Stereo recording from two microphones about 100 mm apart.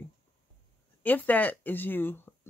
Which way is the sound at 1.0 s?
15° left (ahead or behind).